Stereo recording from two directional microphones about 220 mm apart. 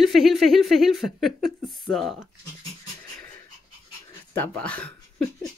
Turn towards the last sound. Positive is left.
turn(degrees=5)  # may be behind; listen again after turning